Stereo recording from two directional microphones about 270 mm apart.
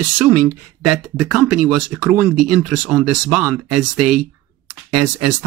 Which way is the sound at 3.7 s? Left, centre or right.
Right.